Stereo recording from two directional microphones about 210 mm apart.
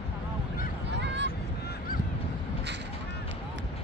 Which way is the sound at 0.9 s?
55° right (ahead or behind).